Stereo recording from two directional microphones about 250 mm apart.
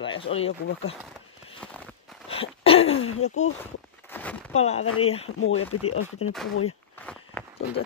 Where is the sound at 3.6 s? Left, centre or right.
Centre.